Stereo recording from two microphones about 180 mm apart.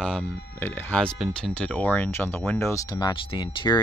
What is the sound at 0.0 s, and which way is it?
Speech, centre (ahead or behind).